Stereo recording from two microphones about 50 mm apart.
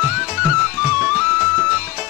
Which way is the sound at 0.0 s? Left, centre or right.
Centre.